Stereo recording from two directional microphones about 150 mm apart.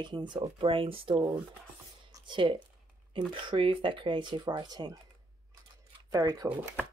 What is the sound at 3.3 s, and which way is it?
Speech, 35° right (ahead or behind).